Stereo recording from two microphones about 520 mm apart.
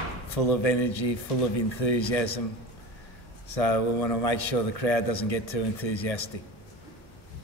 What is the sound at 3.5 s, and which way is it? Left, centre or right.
A man's voice, left.